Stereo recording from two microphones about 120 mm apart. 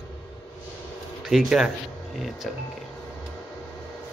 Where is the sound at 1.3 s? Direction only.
Centre (ahead or behind).